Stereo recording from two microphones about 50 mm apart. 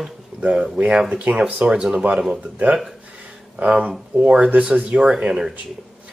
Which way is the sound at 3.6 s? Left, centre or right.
Right.